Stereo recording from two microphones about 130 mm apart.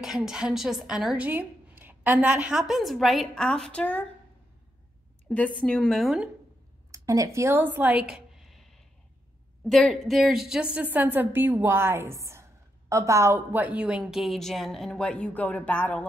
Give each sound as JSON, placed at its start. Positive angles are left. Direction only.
{"t": 0.0, "sound": "speech", "side_deg": -5}
{"t": 5.3, "sound": "speech", "side_deg": 10}
{"t": 6.9, "sound": "a sound", "side_deg": -25}
{"t": 9.7, "sound": "a woman's voice", "side_deg": 0}